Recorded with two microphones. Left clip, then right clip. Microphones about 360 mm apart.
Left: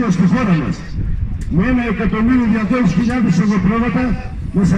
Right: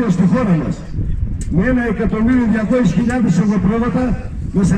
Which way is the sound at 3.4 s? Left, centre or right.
Right.